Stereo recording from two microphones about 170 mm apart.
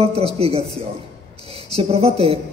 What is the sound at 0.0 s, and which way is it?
A man's voice, 35° right (ahead or behind).